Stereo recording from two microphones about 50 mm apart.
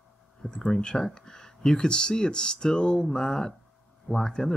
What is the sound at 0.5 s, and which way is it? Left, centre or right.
Speech, centre.